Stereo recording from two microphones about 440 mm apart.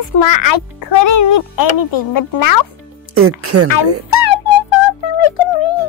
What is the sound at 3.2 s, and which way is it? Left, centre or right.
Speech, right.